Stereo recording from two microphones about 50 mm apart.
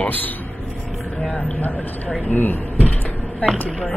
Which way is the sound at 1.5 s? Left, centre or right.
Left.